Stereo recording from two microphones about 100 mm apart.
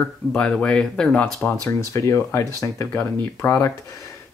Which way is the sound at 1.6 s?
30° left (ahead or behind).